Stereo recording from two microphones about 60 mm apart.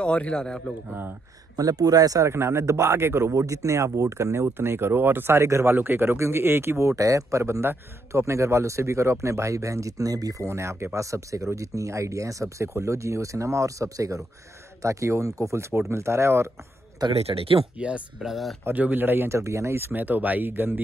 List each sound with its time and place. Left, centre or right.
0.0 s a man's voice: centre
1.6 s speech: right
2.2 s speech: right
3.3 s speech: right
5.8 s speech: right
10.4 s speech: right
17.0 s speech: right
17.7 s speech: right
18.2 s speech: centre
18.6 s speech: right
19.2 s speech: right
19.9 s speech: right